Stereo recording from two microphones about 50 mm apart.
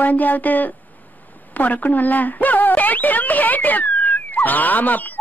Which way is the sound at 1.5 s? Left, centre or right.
Left.